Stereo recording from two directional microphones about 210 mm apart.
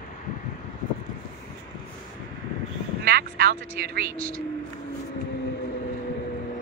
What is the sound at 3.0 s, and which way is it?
Speech, 50° right (ahead or behind).